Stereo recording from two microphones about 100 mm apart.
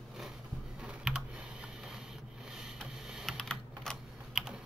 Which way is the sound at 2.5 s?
5° right (ahead or behind).